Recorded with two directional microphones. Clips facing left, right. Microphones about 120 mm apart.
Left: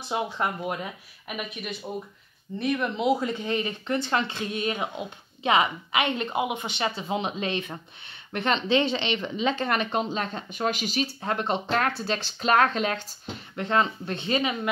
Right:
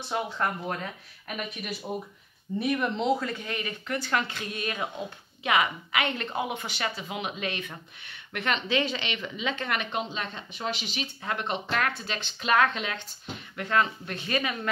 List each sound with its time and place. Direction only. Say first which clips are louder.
0.1 s speech: left 2 dB; 15° left (ahead or behind)
1.3 s speech: left 1 dB; centre (ahead or behind)
3.2 s speech: left 5 dB; 20° left (ahead or behind); by 13.0 s 40° left (ahead or behind)
13.6 s speech: left 2 dB; 25° left (ahead or behind)